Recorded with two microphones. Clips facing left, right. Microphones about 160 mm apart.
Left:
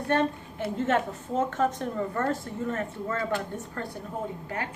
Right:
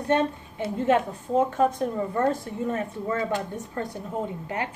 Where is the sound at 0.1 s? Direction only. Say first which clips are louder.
Right 1 dB; 20° right (ahead or behind).